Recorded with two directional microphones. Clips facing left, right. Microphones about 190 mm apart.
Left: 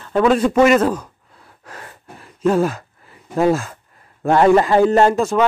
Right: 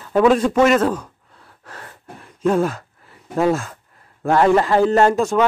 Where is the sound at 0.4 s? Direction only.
10° left (ahead or behind).